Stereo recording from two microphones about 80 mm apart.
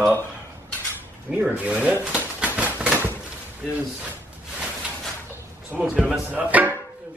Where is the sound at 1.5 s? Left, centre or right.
Centre.